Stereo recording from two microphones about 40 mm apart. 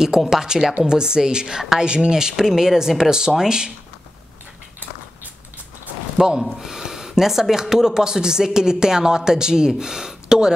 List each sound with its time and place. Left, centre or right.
0.3 s a woman's voice: centre
6.1 s speech: centre